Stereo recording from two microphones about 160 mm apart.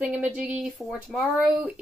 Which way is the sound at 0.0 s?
5° right (ahead or behind).